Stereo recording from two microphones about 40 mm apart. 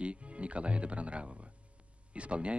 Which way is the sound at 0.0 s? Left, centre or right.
Right.